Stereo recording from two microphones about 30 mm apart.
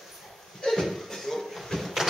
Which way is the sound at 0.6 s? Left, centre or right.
Centre.